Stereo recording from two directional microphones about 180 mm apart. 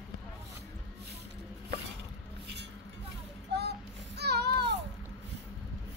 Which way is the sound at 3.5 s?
65° right (ahead or behind).